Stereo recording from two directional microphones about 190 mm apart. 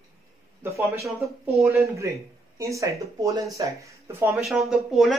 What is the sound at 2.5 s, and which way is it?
Speech, 15° right (ahead or behind).